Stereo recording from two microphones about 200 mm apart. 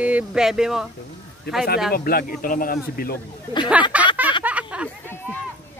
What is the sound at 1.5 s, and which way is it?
Speech, 55° left (ahead or behind).